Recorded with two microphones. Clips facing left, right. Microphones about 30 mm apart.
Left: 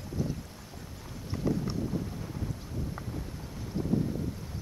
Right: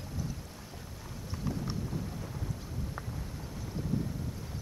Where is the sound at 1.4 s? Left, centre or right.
Centre.